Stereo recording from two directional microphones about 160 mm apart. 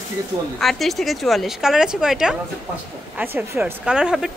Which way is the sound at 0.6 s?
Centre (ahead or behind).